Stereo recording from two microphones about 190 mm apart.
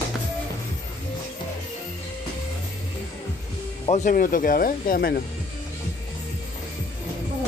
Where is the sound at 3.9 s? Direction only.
45° left (ahead or behind).